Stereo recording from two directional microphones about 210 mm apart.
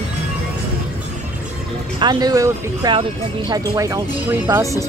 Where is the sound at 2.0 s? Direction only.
20° right (ahead or behind).